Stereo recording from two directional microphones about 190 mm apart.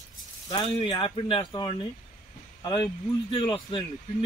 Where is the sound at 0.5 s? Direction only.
25° left (ahead or behind).